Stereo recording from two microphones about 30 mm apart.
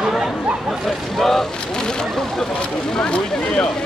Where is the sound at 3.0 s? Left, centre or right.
Left.